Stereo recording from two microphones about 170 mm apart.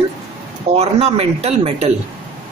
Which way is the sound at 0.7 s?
40° right (ahead or behind).